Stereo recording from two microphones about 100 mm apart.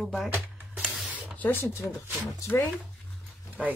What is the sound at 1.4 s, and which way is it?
Speech, 25° left (ahead or behind).